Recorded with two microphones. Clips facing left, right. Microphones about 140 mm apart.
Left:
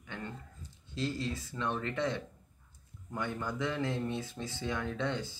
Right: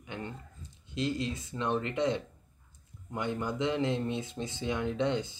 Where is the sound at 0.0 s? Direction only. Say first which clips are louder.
Right 3 dB; 15° right (ahead or behind).